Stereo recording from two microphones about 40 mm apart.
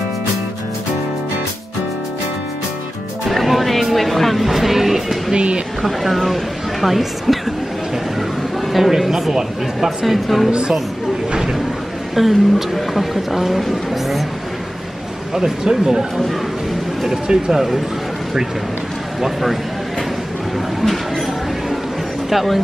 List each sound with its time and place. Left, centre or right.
3.3 s music: centre
5.3 s speech: right
5.8 s speech: centre
8.7 s speech: centre
12.2 s speech: centre
15.3 s speech: centre
17.1 s speech: centre
19.2 s speech: centre
22.3 s speech: centre